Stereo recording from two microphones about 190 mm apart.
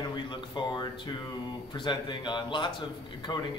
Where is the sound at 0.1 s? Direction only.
25° left (ahead or behind).